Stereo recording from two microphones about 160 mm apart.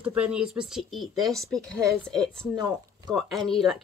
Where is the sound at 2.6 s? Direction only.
25° right (ahead or behind).